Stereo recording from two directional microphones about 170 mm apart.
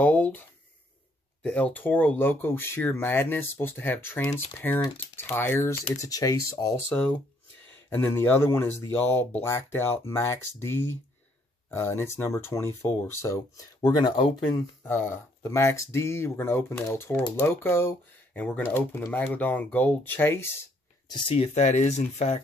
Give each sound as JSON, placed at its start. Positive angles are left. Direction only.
{"t": 0.0, "sound": "a sound", "side_deg": 10}
{"t": 1.4, "sound": "speech", "side_deg": 10}
{"t": 6.9, "sound": "speech", "side_deg": 10}
{"t": 14.8, "sound": "speech", "side_deg": 10}
{"t": 21.1, "sound": "speech", "side_deg": 35}